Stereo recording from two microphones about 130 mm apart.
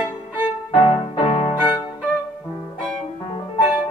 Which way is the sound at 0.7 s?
40° left (ahead or behind).